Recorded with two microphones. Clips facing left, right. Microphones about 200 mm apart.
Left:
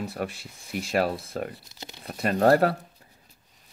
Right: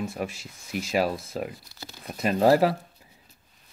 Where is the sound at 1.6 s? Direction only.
20° left (ahead or behind).